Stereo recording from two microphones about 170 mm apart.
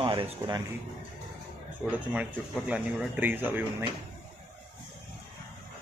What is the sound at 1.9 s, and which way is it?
Speech, 10° right (ahead or behind).